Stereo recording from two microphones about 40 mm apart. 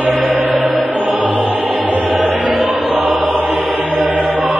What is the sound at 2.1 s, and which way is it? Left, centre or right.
Choir, centre.